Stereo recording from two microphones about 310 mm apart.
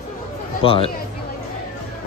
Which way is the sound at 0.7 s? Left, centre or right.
Centre.